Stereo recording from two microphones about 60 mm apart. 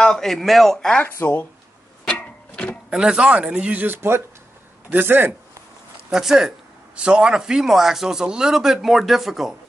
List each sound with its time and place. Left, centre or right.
0.0 s speech: centre
0.7 s speech: centre
1.1 s speech: left
2.0 s a sound: centre
2.9 s speech: centre
3.8 s speech: right
6.0 s speech: centre